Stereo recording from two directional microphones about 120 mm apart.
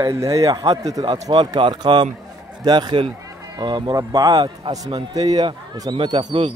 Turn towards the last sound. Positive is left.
turn(degrees=-35)  # may be behind; listen again after turning